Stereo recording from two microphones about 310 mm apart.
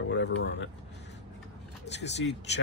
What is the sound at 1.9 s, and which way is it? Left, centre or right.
Speech, left.